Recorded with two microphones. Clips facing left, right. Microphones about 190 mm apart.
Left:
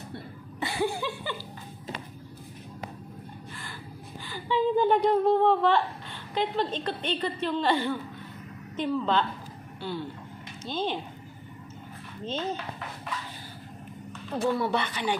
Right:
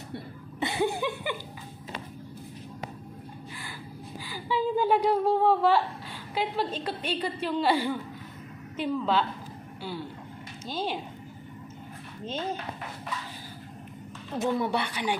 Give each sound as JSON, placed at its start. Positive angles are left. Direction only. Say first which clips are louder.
{"t": 0.6, "sound": "a sound", "louder": "right 1 dB", "side_deg": -20}
{"t": 4.3, "sound": "gasp", "louder": "left 2 dB", "side_deg": -5}
{"t": 6.3, "sound": "a woman's voice", "louder": "left 2 dB", "side_deg": -5}
{"t": 12.3, "sound": "a woman's voice", "louder": "left 1 dB", "side_deg": -10}
{"t": 14.4, "sound": "a woman's voice", "louder": "left 1 dB", "side_deg": -15}